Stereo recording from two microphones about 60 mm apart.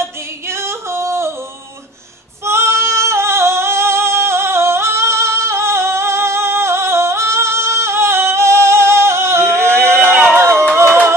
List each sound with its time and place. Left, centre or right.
0.0 s music: right
2.4 s female singing: right
10.2 s a sound: right